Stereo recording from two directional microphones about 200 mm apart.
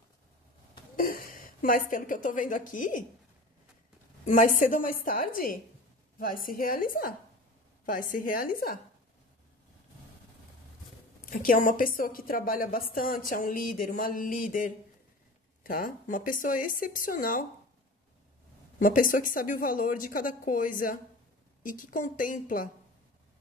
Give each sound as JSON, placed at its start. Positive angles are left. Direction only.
{"t": 0.9, "sound": "speech", "side_deg": 45}
{"t": 4.3, "sound": "a woman's voice", "side_deg": 40}
{"t": 11.1, "sound": "a woman's voice", "side_deg": 45}
{"t": 18.8, "sound": "a woman's voice", "side_deg": 45}